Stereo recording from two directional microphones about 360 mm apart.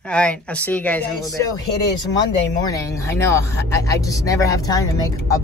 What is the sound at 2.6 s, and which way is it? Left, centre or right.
Speech, centre.